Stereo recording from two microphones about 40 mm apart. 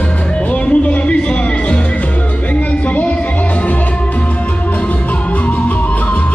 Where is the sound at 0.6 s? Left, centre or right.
Left.